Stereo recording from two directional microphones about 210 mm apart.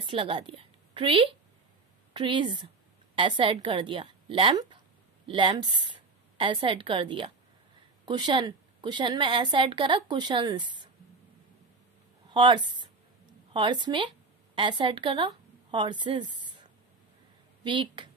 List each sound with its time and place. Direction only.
0.0 s a woman's voice: 25° right (ahead or behind)
12.3 s a woman's voice: 20° right (ahead or behind)
17.6 s a woman's voice: 25° right (ahead or behind)